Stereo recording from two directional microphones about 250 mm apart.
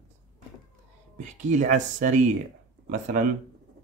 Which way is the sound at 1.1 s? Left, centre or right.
Right.